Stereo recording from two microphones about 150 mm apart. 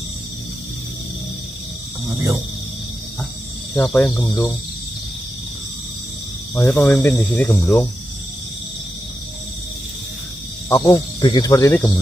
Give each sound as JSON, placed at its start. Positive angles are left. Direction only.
{"t": 2.1, "sound": "speech", "side_deg": -15}
{"t": 3.7, "sound": "speech", "side_deg": 15}
{"t": 6.5, "sound": "speech", "side_deg": 15}
{"t": 10.7, "sound": "speech", "side_deg": 25}